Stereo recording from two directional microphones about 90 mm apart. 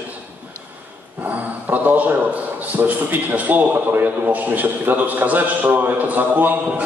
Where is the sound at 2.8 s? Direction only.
20° right (ahead or behind).